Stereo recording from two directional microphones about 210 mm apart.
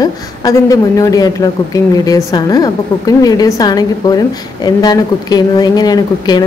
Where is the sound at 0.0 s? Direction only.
15° left (ahead or behind).